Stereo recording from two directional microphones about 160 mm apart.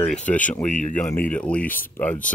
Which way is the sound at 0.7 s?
50° left (ahead or behind).